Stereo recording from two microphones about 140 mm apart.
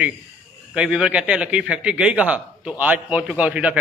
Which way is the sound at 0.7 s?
5° right (ahead or behind).